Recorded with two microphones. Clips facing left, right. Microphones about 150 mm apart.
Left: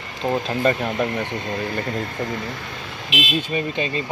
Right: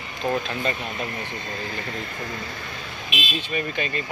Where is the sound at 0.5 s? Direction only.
45° left (ahead or behind).